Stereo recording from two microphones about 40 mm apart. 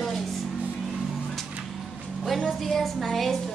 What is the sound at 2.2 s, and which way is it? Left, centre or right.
A woman's voice, centre.